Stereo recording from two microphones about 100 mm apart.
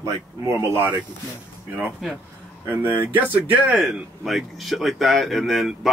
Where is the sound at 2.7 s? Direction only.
20° right (ahead or behind).